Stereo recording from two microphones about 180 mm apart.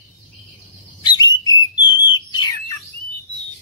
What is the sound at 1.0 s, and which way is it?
Bird, 25° left (ahead or behind).